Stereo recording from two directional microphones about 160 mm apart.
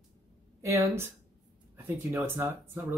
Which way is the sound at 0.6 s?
20° right (ahead or behind).